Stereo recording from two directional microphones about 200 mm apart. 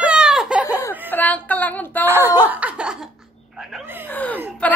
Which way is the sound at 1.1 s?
10° left (ahead or behind).